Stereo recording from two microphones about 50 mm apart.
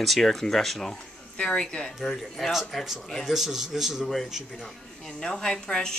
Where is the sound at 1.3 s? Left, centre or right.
Left.